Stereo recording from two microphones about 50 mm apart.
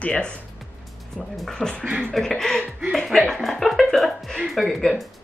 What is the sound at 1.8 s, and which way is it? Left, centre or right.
Speech, right.